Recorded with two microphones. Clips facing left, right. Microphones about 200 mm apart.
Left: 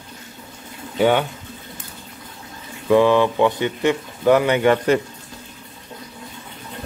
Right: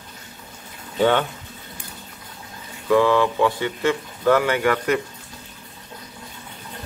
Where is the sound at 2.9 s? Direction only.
20° left (ahead or behind).